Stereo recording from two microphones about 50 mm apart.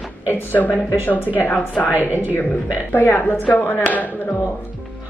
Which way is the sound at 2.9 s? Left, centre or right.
Left.